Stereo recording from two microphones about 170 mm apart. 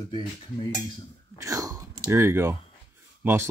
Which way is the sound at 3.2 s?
15° right (ahead or behind).